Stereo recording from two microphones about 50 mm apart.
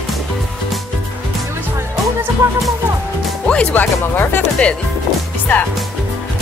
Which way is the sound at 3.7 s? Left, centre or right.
Left.